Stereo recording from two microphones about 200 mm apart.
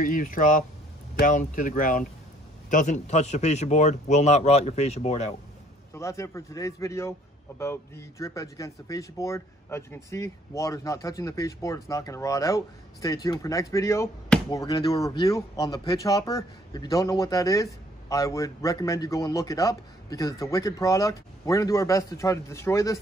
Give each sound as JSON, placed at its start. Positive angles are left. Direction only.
{"t": 0.0, "sound": "speech", "side_deg": 40}
{"t": 5.9, "sound": "a man's voice", "side_deg": 15}